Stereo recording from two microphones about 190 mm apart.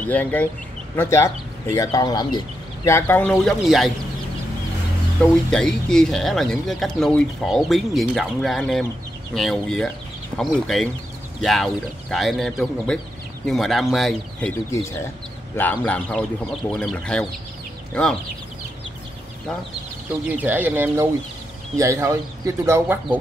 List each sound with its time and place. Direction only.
0.0 s speech: 10° left (ahead or behind)
5.2 s speech: 5° left (ahead or behind)
14.7 s speech: 15° left (ahead or behind)
20.2 s speech: 10° right (ahead or behind)